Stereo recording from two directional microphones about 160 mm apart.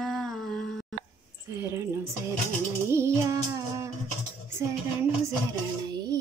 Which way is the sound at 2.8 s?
15° right (ahead or behind).